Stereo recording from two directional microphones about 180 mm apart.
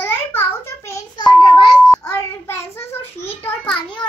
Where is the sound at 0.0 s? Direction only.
10° left (ahead or behind).